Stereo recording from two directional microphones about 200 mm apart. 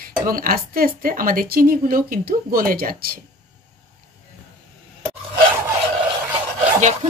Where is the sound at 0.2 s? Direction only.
45° right (ahead or behind).